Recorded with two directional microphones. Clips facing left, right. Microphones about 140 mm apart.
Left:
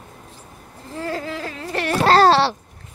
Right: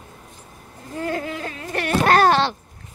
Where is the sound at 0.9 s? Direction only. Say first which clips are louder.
Right 1 dB; 30° left (ahead or behind).